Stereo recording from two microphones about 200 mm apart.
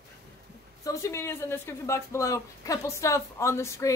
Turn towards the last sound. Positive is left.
turn(degrees=15)  # may be behind; listen again after turning